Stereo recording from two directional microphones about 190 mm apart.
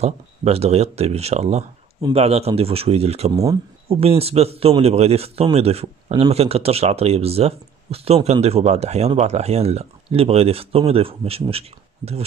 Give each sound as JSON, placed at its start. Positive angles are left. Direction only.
{"t": 0.0, "sound": "speech", "side_deg": -35}